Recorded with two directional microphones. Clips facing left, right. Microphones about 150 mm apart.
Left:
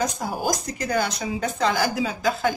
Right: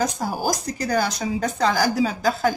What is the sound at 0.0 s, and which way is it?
Speech, 35° right (ahead or behind).